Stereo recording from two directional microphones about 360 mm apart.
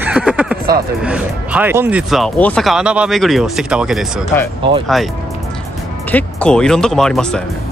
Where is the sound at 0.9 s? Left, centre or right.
Centre.